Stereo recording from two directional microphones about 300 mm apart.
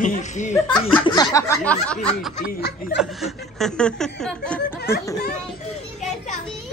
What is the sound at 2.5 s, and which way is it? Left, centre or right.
Speech, left.